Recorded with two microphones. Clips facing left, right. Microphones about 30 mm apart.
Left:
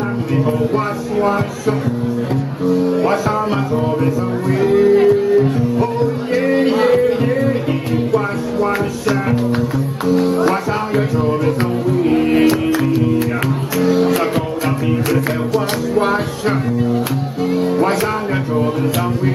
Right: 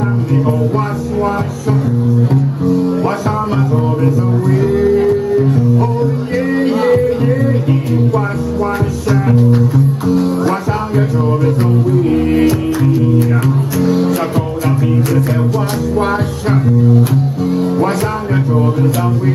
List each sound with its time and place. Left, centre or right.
0.5 s speech: centre
4.6 s speech: centre
5.0 s music: centre
10.0 s speech: centre
10.5 s music: centre
13.7 s music: centre
16.0 s music: centre